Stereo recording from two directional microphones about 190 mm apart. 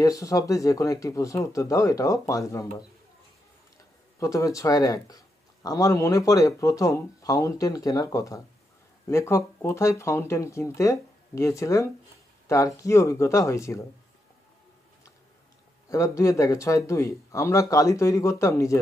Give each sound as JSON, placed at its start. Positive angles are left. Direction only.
{"t": 0.0, "sound": "speech", "side_deg": 15}
{"t": 4.2, "sound": "speech", "side_deg": 15}
{"t": 15.9, "sound": "speech", "side_deg": 15}